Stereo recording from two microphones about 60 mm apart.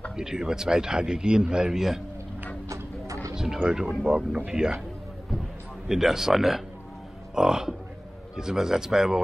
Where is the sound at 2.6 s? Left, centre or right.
Right.